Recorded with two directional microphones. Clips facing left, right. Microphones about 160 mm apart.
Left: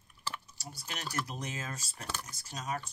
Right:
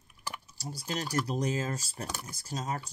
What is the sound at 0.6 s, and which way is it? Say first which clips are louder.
Speech: right 9 dB; 35° right (ahead or behind).